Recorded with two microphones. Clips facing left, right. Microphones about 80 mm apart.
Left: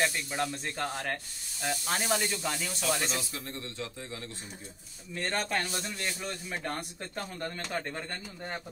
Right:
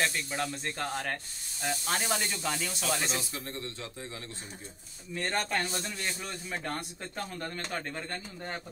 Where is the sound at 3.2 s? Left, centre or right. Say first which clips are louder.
Right 1 dB; right.